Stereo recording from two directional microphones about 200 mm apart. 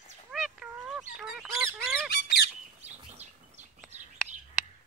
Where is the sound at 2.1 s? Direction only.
55° left (ahead or behind).